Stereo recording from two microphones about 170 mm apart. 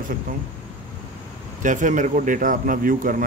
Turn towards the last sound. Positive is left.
turn(degrees=-55)  # may be behind; listen again after turning